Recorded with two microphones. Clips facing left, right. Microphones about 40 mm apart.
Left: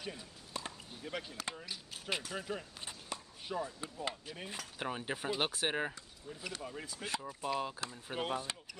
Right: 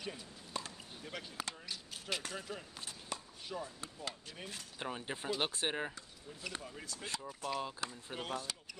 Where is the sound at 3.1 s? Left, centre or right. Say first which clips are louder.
Even; centre.